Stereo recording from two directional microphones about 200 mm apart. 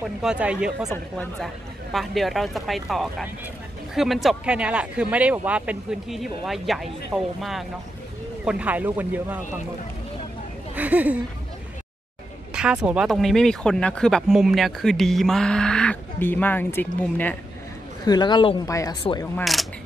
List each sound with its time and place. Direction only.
0.0 s speech: 5° right (ahead or behind)
10.8 s speech: 5° right (ahead or behind)
12.7 s speech: 5° right (ahead or behind)
18.0 s speech: 20° left (ahead or behind)